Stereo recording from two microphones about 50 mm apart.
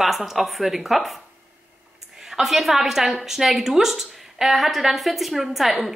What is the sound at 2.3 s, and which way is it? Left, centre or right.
A woman's voice, centre.